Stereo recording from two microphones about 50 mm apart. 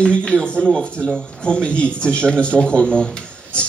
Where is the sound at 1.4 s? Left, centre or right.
Centre.